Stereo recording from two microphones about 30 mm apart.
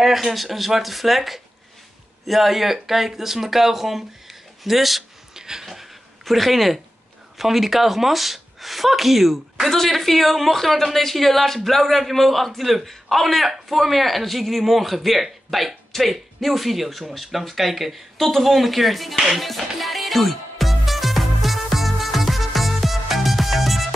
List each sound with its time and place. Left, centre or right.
0.0 s a woman's voice: centre
5.3 s a sound: centre
5.7 s a sound: centre
7.3 s a woman's voice: centre
19.1 s speech: centre
19.4 s music: centre